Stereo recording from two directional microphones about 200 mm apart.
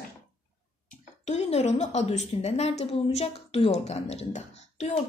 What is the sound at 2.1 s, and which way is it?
Speech, 30° left (ahead or behind).